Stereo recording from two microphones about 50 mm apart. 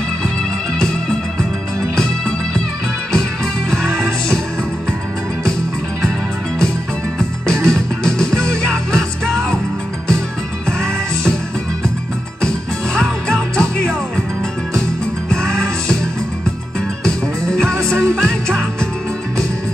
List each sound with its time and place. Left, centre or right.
2.0 s music: centre
3.7 s music: centre
7.2 s music: centre
12.4 s music: centre
15.2 s music: centre
17.0 s music: centre